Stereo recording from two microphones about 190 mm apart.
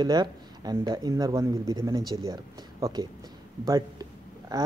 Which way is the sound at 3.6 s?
20° right (ahead or behind).